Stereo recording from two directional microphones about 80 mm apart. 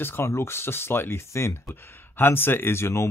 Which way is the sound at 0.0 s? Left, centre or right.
Left.